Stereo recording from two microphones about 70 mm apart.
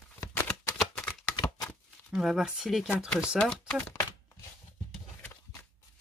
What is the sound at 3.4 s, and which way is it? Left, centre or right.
Speech, centre.